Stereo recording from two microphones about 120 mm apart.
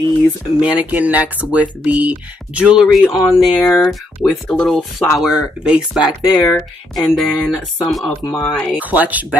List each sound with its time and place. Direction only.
0.6 s speech: 10° right (ahead or behind)
8.2 s speech: 35° left (ahead or behind)
8.7 s speech: 15° right (ahead or behind)